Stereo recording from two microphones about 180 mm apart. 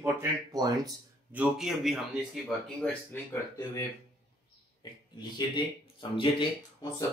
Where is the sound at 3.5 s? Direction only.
15° left (ahead or behind).